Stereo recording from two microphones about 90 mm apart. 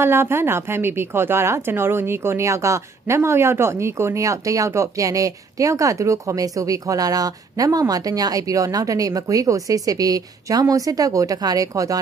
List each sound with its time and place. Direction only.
0.0 s speech: 25° right (ahead or behind)